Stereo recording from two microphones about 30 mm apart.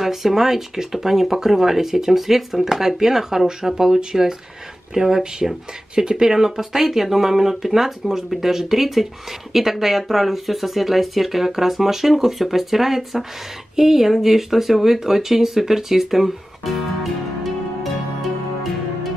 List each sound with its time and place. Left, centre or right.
0.0 s speech: centre